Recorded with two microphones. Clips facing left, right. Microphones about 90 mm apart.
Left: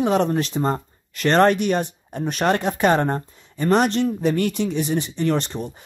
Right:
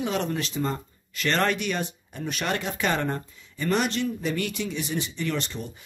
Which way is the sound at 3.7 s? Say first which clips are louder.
Left 7 dB; 60° left (ahead or behind).